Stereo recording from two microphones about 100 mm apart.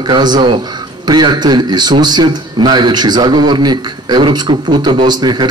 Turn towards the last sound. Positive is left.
turn(degrees=-45)  # may be behind; listen again after turning